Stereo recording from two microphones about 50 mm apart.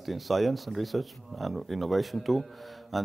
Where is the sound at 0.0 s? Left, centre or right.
Centre.